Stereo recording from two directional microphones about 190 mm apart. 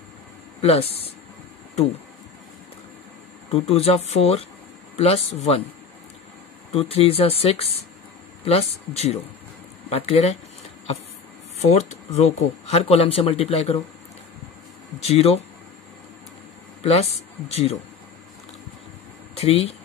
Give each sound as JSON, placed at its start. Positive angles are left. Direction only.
{"t": 0.6, "sound": "speech", "side_deg": 30}
{"t": 3.4, "sound": "speech", "side_deg": 30}
{"t": 6.7, "sound": "speech", "side_deg": 30}
{"t": 11.7, "sound": "speech", "side_deg": 35}
{"t": 15.0, "sound": "speech", "side_deg": 35}
{"t": 16.8, "sound": "speech", "side_deg": 35}
{"t": 19.3, "sound": "speech", "side_deg": 30}